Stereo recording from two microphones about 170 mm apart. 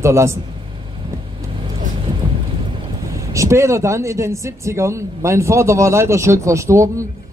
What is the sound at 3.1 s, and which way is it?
A man's voice, 15° right (ahead or behind).